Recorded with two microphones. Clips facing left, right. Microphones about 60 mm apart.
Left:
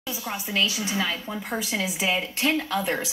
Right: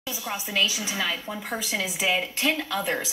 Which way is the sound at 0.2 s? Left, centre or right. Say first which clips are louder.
Even; centre.